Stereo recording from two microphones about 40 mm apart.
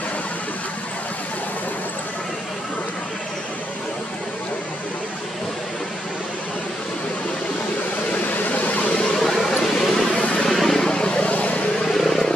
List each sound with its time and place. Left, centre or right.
8.1 s a sound: left
9.2 s a sound: centre
10.5 s vehicle: centre
10.8 s vehicle: left
11.2 s vehicle: left
11.8 s vehicle: centre